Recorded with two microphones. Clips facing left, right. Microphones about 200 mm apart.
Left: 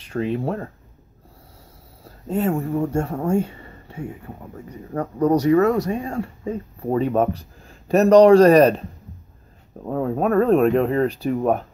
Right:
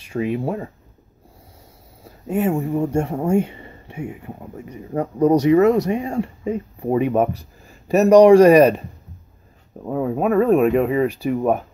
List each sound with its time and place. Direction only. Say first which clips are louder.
0.0 s speech: right 1 dB; 10° right (ahead or behind)
2.2 s speech: right 2 dB; 10° right (ahead or behind)
9.8 s speech: right 1 dB; 5° right (ahead or behind)